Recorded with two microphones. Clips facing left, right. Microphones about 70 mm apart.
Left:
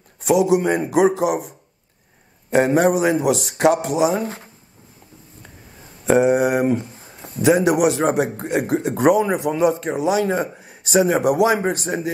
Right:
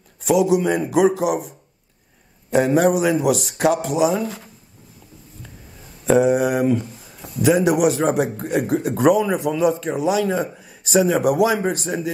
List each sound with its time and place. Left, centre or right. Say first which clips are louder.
0.3 s a man's voice: left 1 dB; left
2.6 s a man's voice: even; left
6.0 s a man's voice: even; left
6.8 s a man's voice: right 1 dB; left